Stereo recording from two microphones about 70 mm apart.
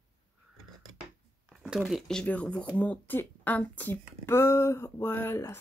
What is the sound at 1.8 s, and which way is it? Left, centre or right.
Speech, centre.